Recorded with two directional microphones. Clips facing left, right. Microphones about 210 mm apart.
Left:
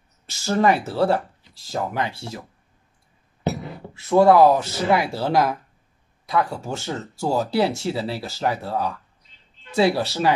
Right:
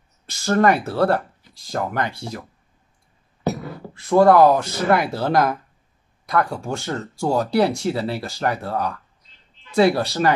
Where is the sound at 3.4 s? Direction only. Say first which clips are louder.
Right 1 dB; 20° left (ahead or behind).